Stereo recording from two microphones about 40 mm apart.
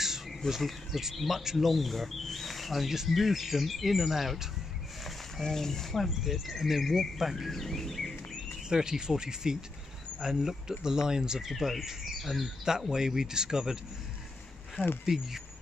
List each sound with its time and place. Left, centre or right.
0.5 s speech: centre
5.4 s speech: centre
6.0 s speech: centre
8.6 s speech: centre
12.6 s speech: centre
14.8 s speech: left